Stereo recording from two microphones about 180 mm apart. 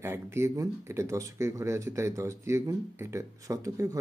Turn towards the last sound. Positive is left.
turn(degrees=-20)  # may be behind; listen again after turning